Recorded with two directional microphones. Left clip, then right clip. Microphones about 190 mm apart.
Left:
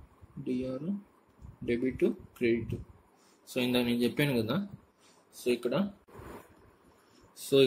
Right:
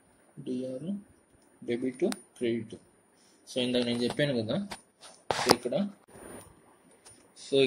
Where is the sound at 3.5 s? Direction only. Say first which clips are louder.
Right 1 dB; 45° left (ahead or behind).